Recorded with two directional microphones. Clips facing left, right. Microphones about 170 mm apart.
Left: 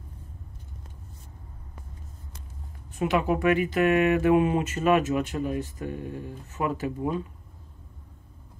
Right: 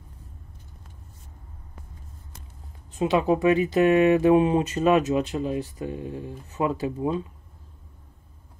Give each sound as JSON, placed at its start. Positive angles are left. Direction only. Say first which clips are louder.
{"t": 3.3, "sound": "speech", "louder": "right 3 dB", "side_deg": -20}